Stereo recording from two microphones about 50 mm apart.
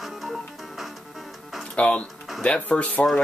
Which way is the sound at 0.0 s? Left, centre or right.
Centre.